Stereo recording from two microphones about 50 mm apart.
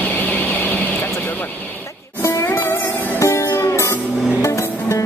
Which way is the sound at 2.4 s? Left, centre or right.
Left.